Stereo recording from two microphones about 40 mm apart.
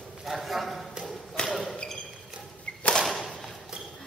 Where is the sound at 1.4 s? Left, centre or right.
Centre.